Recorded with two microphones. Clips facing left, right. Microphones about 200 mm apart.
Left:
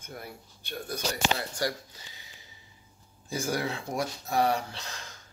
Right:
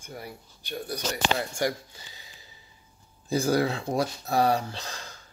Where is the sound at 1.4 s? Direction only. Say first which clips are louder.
Right 4 dB; 20° right (ahead or behind).